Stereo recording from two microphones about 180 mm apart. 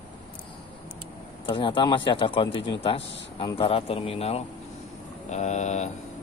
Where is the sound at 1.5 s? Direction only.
30° left (ahead or behind).